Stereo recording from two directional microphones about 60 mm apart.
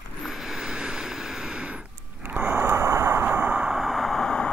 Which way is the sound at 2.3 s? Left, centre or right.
Right.